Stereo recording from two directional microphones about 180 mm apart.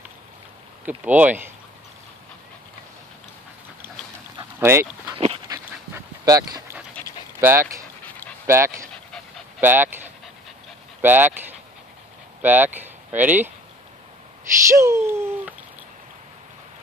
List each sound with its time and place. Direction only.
0.8 s speech: 10° right (ahead or behind)
4.6 s speech: 15° right (ahead or behind)
5.1 s dog: 35° right (ahead or behind)
5.5 s dog: 15° right (ahead or behind)
7.3 s speech: 15° right (ahead or behind)
11.0 s speech: 10° right (ahead or behind)
14.7 s speech: 15° right (ahead or behind)